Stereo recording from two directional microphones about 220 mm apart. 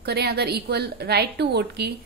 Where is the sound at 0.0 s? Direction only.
45° right (ahead or behind).